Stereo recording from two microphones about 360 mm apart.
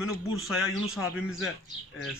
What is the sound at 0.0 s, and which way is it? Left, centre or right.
Speech, centre.